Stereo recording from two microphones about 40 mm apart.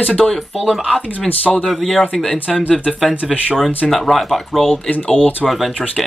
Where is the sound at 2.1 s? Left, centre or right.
Centre.